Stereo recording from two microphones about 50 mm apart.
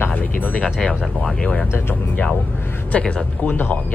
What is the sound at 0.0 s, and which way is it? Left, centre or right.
Speech, left.